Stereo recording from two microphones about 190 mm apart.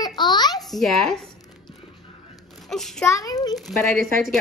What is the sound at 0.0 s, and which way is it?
Babbling, 25° left (ahead or behind).